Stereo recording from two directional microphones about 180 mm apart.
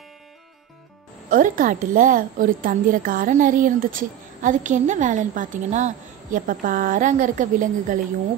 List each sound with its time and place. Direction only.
1.3 s a woman's voice: 50° right (ahead or behind)